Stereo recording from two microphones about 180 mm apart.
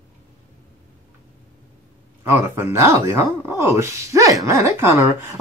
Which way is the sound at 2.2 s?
15° right (ahead or behind).